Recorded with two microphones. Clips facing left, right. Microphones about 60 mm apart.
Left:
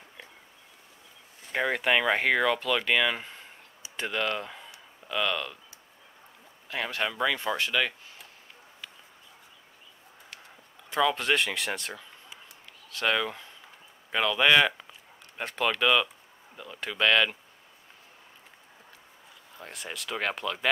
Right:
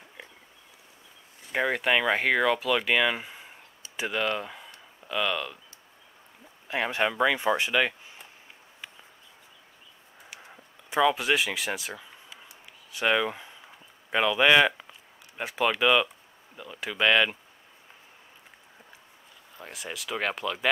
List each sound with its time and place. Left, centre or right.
1.5 s speech: centre
6.7 s speech: centre
10.4 s a sound: centre
12.9 s speech: centre
19.5 s speech: centre